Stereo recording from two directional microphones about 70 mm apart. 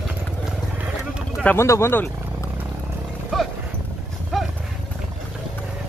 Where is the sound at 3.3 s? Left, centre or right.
Centre.